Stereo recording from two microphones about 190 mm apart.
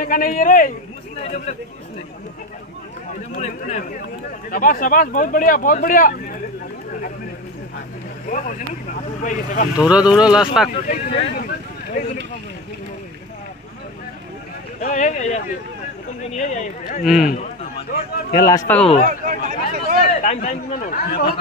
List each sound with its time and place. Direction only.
0.0 s speech: 45° left (ahead or behind)
1.2 s speech: 35° left (ahead or behind)
3.3 s speech: 40° left (ahead or behind)
8.3 s speech: 45° left (ahead or behind)
9.8 s speech: 5° right (ahead or behind)
11.3 s a sound: 50° left (ahead or behind)
14.8 s speech: 40° left (ahead or behind)
18.3 s a man's voice: 20° left (ahead or behind)
19.0 s speech: 45° right (ahead or behind)
20.1 s speech: 35° left (ahead or behind)